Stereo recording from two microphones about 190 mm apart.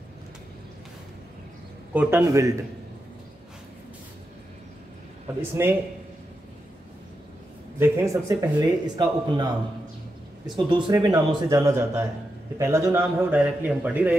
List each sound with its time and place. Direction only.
2.0 s a man's voice: 10° right (ahead or behind)
5.4 s a man's voice: 10° right (ahead or behind)
7.8 s speech: 15° right (ahead or behind)
10.5 s a man's voice: 25° right (ahead or behind); by 14.1 s 10° right (ahead or behind)